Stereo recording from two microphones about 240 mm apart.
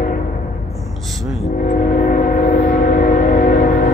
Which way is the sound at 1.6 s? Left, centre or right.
Left.